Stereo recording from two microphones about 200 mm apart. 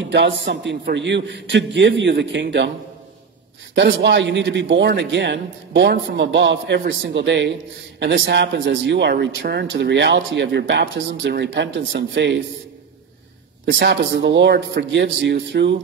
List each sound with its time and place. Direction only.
0.0 s speech: 60° right (ahead or behind)
3.7 s speech: 60° right (ahead or behind)
13.7 s speech: 60° right (ahead or behind)